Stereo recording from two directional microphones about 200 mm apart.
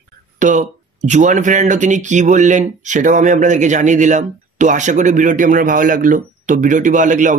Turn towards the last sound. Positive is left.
turn(degrees=-40)  # may be behind; listen again after turning